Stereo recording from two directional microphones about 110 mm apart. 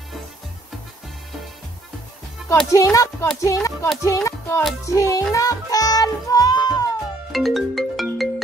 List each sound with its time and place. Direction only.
2.7 s speech: 30° left (ahead or behind)
4.0 s music: 30° left (ahead or behind)
4.8 s speech: 30° left (ahead or behind)
5.3 s music: 30° left (ahead or behind)
7.3 s music: centre (ahead or behind)